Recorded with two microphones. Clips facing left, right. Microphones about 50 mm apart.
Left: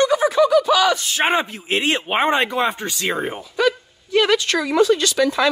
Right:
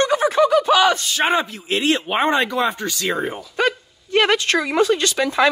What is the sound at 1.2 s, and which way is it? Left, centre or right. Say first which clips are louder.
Speech: even; centre.